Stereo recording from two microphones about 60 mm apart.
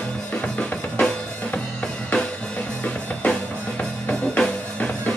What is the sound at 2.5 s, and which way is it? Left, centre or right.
Music, left.